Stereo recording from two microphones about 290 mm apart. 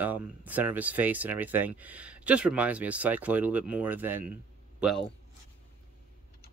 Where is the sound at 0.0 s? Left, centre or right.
Centre.